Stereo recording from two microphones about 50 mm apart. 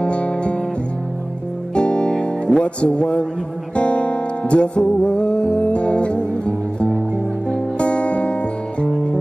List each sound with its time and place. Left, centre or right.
0.0 s music: left
1.8 s music: left